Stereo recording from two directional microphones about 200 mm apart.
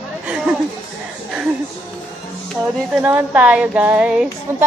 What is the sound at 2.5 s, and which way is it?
Speech, 5° right (ahead or behind).